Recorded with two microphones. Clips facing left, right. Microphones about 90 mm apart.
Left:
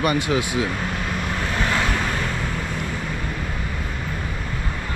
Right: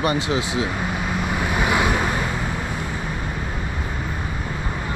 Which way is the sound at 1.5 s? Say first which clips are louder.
Right 3 dB; 15° right (ahead or behind).